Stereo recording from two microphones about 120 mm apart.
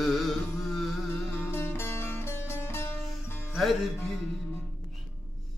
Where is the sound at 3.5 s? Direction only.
Centre (ahead or behind).